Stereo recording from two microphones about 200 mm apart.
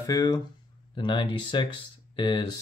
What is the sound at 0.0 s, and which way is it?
Speech, 20° left (ahead or behind).